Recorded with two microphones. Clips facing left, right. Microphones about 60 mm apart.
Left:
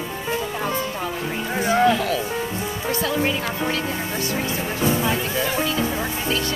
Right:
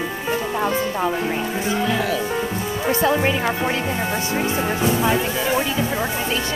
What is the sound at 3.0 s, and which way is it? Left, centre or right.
Speech, right.